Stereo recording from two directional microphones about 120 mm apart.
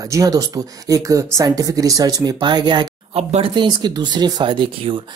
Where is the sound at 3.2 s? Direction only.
60° right (ahead or behind).